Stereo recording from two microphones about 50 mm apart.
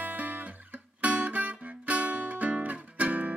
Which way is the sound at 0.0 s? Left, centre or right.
Right.